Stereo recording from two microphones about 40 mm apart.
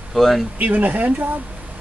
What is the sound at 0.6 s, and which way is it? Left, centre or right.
Speech, right.